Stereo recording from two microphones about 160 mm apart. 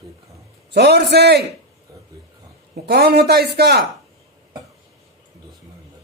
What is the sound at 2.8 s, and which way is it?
A man's voice, 80° right.